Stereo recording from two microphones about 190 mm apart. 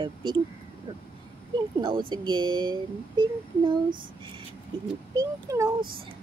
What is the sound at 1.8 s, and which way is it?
Speech, 25° right (ahead or behind).